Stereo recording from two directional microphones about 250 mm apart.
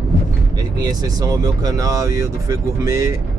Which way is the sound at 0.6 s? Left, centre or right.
Centre.